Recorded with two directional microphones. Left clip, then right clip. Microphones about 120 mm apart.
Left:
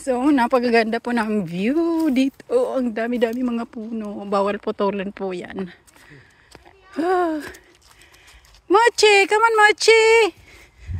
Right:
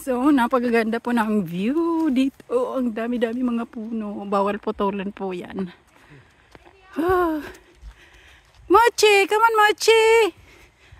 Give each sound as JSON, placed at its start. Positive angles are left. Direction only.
{"t": 0.0, "sound": "speech", "side_deg": -25}
{"t": 0.4, "sound": "speech", "side_deg": -15}
{"t": 1.6, "sound": "speech", "side_deg": -5}
{"t": 3.4, "sound": "speech", "side_deg": -15}
{"t": 6.9, "sound": "speech", "side_deg": -30}
{"t": 8.6, "sound": "speech", "side_deg": -30}